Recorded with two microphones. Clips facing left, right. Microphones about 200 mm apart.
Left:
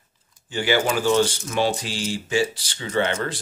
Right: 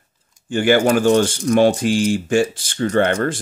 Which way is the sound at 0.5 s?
50° right (ahead or behind).